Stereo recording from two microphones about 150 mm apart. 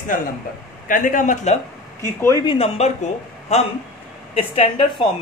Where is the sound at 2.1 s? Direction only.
20° left (ahead or behind).